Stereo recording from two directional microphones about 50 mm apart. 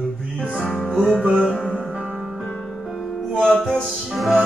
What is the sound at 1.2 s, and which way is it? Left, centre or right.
Music, centre.